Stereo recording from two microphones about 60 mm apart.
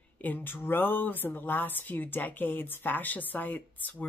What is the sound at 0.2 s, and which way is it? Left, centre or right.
Speech, left.